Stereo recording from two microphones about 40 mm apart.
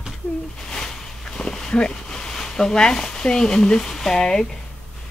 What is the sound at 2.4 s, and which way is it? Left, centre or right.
Speech, centre.